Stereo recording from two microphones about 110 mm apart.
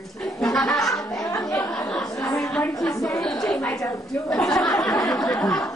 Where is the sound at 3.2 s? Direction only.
5° left (ahead or behind).